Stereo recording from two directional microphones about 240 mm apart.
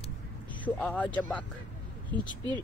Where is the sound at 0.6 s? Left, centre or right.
Centre.